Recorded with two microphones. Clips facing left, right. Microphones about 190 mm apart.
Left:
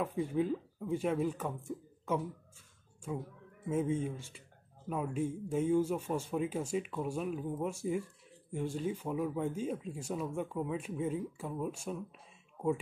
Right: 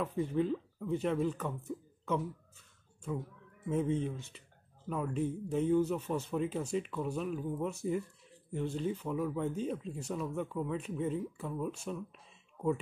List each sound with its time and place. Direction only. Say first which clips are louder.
0.0 s speech: even; 10° left (ahead or behind)
3.6 s speech: even; 10° left (ahead or behind)
7.3 s speech: right 1 dB; 20° left (ahead or behind)
7.6 s speech: even; 10° left (ahead or behind)